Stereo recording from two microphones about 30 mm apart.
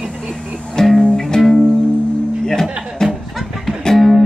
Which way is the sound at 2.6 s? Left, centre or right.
Right.